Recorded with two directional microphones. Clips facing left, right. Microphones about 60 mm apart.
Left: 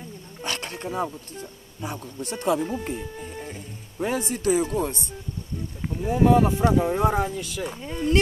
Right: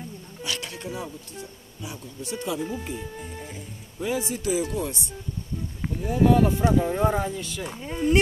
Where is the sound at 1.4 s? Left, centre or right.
Left.